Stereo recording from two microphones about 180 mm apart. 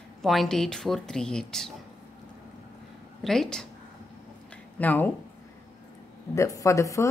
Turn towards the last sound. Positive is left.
turn(degrees=15)  # may be behind; listen again after turning